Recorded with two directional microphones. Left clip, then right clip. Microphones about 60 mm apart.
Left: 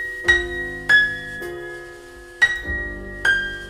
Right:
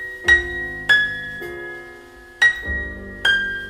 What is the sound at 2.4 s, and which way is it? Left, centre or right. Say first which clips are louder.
Music: right 2 dB; left.